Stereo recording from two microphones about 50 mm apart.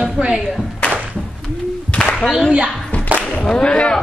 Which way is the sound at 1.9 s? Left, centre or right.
Left.